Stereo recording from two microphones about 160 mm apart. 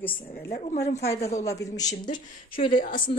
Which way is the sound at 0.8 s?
45° left (ahead or behind).